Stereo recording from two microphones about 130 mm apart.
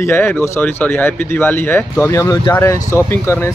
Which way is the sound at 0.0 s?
20° left (ahead or behind).